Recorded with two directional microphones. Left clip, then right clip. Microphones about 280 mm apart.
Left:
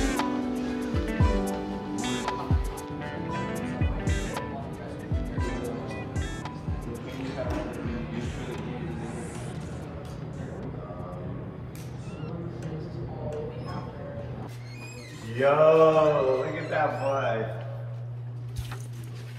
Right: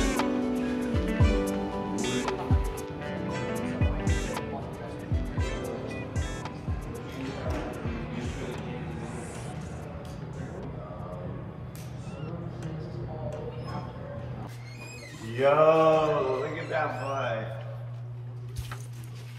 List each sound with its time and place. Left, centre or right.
0.0 s music: centre
7.4 s music: left
8.9 s music: centre
15.2 s mantra: left